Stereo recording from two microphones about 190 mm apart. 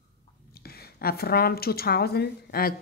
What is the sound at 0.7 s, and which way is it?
A woman's voice, 55° left (ahead or behind).